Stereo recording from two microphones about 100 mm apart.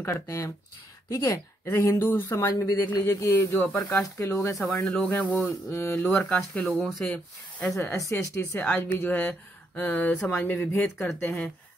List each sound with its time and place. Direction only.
0.0 s speech: 25° left (ahead or behind)
4.7 s speech: 15° left (ahead or behind)
5.7 s speech: 25° left (ahead or behind)
6.2 s speech: 10° left (ahead or behind)
8.4 s speech: 20° left (ahead or behind)